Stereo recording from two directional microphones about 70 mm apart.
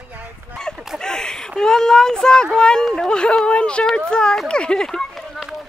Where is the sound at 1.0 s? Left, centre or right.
Centre.